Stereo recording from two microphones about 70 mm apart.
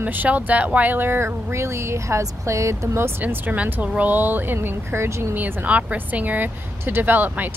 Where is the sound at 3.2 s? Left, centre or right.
Right.